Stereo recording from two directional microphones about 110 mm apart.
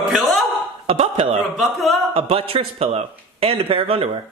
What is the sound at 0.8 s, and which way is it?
Speech, 65° right (ahead or behind).